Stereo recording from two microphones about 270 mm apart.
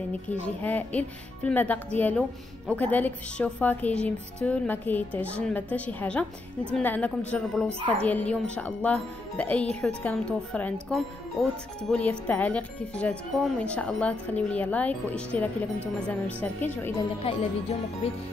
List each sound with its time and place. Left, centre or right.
0.3 s speech: centre
17.2 s music: left